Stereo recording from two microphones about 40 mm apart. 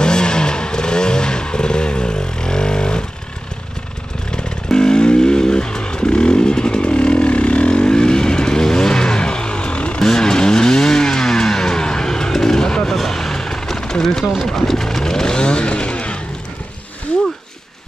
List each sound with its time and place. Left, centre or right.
0.0 s vehicle: centre
4.3 s vehicle: centre
10.0 s vehicle: centre